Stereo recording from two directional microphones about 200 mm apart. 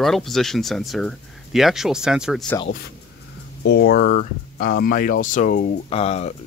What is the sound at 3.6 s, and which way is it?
Speech, 55° left (ahead or behind).